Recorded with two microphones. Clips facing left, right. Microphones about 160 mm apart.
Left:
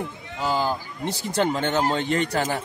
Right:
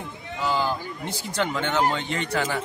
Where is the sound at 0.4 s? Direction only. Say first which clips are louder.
Left 1 dB; 40° left (ahead or behind).